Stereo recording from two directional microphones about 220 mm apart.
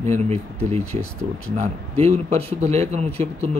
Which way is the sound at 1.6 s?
30° right (ahead or behind).